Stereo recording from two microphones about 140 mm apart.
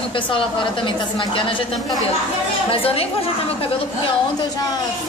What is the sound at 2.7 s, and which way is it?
Speech, 45° left (ahead or behind).